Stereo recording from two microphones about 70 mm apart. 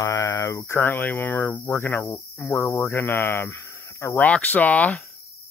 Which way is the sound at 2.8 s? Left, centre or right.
Left.